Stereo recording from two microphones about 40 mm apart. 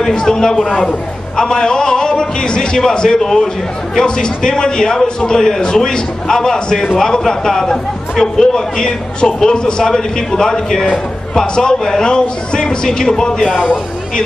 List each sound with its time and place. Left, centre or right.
0.1 s a man's voice: centre